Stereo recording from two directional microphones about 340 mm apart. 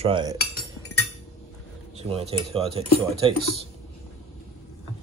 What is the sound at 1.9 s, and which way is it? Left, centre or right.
Speech, centre.